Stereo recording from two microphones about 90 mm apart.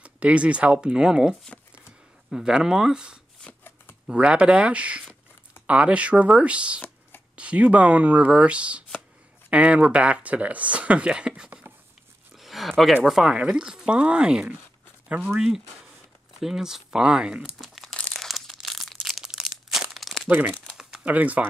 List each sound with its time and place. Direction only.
0.0 s speech: 15° right (ahead or behind)
2.3 s speech: 5° right (ahead or behind)
12.4 s a sound: centre (ahead or behind)
13.0 s speech: 5° right (ahead or behind)
17.9 s a sound: 10° left (ahead or behind)
20.2 s speech: 20° right (ahead or behind)